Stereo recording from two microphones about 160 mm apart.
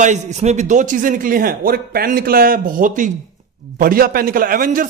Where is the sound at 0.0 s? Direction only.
45° right (ahead or behind).